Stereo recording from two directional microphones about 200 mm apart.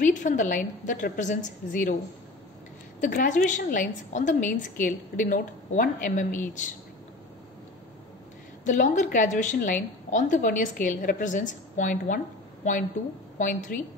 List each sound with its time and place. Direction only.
0.0 s a woman's voice: 40° left (ahead or behind)
3.0 s a woman's voice: 40° left (ahead or behind)
8.6 s a woman's voice: 40° left (ahead or behind)
13.4 s a woman's voice: 40° left (ahead or behind)